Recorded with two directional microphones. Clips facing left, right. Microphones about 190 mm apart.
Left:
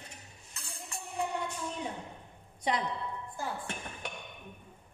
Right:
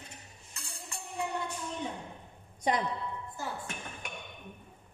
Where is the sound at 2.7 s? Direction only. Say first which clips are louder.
Right 2 dB; 45° right (ahead or behind).